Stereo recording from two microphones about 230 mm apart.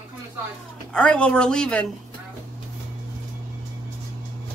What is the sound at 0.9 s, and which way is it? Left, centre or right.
Speech, centre.